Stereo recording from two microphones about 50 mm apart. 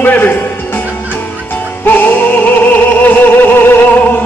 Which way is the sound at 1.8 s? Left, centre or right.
Left.